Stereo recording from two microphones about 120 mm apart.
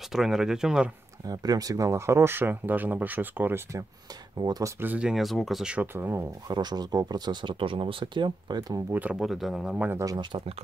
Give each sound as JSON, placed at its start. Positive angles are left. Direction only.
{"t": 0.1, "sound": "speech", "side_deg": -5}
{"t": 1.2, "sound": "speech", "side_deg": -30}
{"t": 4.4, "sound": "speech", "side_deg": -35}
{"t": 4.7, "sound": "speech", "side_deg": -15}
{"t": 5.9, "sound": "speech", "side_deg": -20}
{"t": 6.4, "sound": "speech", "side_deg": -35}
{"t": 8.9, "sound": "speech", "side_deg": -10}
{"t": 9.2, "sound": "speech", "side_deg": 0}
{"t": 9.8, "sound": "speech", "side_deg": -25}